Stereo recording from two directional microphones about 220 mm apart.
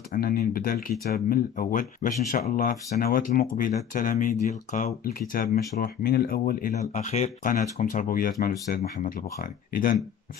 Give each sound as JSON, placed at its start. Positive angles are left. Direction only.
{"t": 0.1, "sound": "speech", "side_deg": 40}